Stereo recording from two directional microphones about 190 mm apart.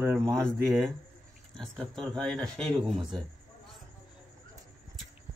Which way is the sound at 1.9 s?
5° left (ahead or behind).